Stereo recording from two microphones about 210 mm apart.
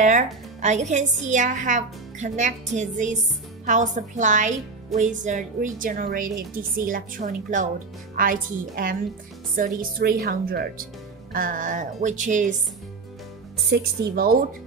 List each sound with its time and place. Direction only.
0.0 s a woman's voice: 35° right (ahead or behind)
13.7 s a woman's voice: 45° right (ahead or behind)